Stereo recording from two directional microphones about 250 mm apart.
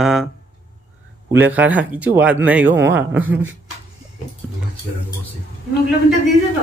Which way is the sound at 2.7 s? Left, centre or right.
Right.